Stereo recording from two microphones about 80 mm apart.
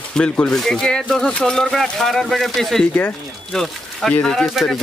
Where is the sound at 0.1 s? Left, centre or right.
Centre.